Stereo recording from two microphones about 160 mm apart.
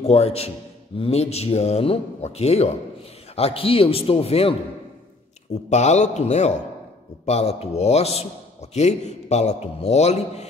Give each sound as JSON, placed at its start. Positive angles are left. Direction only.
{"t": 0.0, "sound": "a man's voice", "side_deg": 40}